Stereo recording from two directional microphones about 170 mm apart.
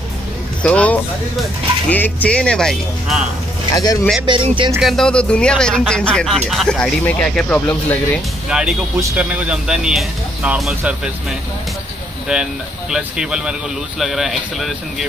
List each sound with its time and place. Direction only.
0.6 s speech: 5° left (ahead or behind)
3.7 s speech: 20° left (ahead or behind)
4.3 s speech: 30° right (ahead or behind)
4.7 s speech: centre (ahead or behind)
8.5 s speech: 5° right (ahead or behind)
12.9 s speech: 5° right (ahead or behind)